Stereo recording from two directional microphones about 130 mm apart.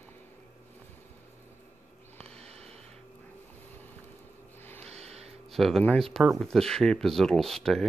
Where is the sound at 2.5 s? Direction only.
55° right (ahead or behind).